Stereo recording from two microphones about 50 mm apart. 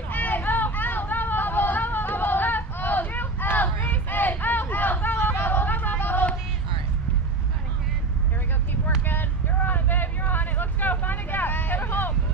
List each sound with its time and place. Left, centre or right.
0.1 s vehicle: left
5.1 s a sound: left
9.0 s vehicle: left